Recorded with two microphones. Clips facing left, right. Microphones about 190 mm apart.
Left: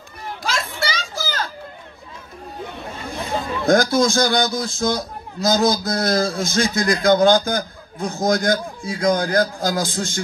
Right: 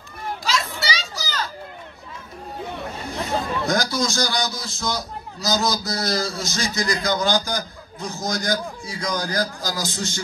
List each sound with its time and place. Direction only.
0.4 s children playing: 55° left (ahead or behind)
3.6 s a man's voice: 55° left (ahead or behind)